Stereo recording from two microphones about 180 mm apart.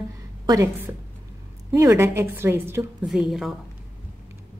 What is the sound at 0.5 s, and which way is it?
A woman's voice, 20° right (ahead or behind).